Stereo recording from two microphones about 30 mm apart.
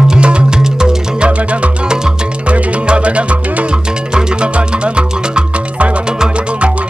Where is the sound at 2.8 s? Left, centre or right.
Right.